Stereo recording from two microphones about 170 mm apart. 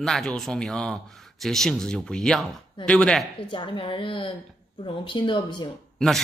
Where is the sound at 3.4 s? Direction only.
25° left (ahead or behind).